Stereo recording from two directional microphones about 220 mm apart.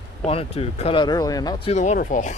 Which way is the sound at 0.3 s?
25° left (ahead or behind).